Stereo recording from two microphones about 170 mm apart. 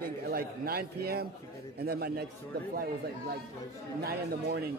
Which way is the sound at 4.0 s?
65° right (ahead or behind).